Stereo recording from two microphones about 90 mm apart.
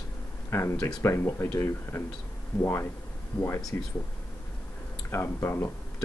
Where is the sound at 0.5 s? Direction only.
30° left (ahead or behind).